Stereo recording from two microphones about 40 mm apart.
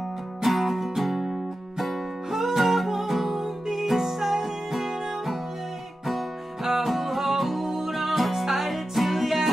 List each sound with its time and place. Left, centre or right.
0.4 s music: centre